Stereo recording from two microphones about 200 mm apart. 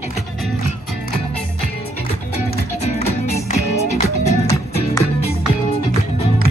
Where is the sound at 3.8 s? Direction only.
30° left (ahead or behind).